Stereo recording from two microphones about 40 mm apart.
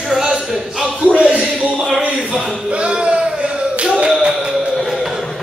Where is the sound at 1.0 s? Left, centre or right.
Right.